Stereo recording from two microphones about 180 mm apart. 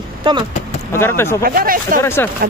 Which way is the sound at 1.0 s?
15° left (ahead or behind).